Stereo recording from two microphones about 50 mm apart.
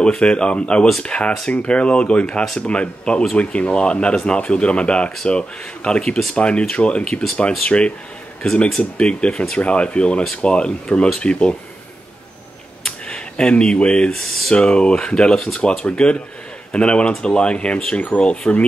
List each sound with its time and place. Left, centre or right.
0.0 s speech: left
12.8 s a sound: centre
14.1 s speech: centre
14.5 s speech: left